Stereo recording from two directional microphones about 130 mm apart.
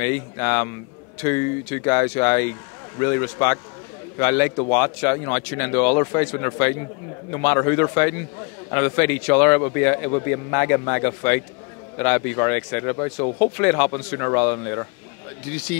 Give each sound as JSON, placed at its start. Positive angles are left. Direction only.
{"t": 0.0, "sound": "speech", "side_deg": 20}